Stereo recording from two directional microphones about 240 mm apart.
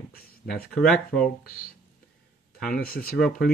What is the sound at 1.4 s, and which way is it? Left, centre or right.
Speech, left.